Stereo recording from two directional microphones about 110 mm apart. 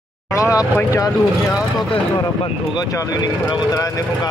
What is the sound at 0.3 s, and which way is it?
Vehicle, 30° left (ahead or behind).